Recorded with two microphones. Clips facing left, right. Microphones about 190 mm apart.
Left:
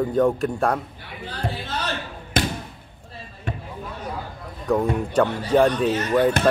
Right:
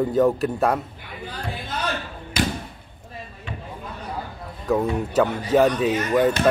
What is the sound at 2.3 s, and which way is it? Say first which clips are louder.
Basketball bounce: even; 50° left (ahead or behind).